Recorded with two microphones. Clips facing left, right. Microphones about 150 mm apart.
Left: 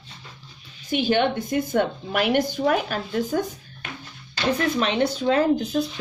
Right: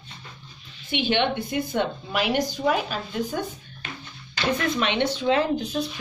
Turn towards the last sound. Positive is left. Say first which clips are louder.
# left 2 dB
turn(degrees=45)  # may be behind; listen again after turning